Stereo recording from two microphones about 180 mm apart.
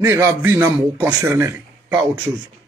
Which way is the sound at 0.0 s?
15° right (ahead or behind).